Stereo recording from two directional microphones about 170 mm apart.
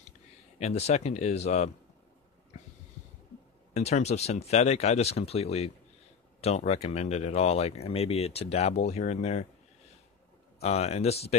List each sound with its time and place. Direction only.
0.6 s speech: 40° left (ahead or behind)
3.7 s speech: 40° left (ahead or behind)
10.6 s speech: 40° left (ahead or behind)